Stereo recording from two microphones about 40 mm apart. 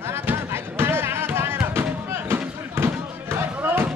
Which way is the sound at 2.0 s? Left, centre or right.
Right.